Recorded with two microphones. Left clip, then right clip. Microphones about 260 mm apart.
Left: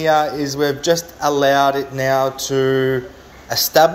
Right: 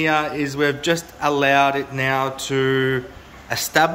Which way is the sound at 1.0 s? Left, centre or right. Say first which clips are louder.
Left 2 dB; right.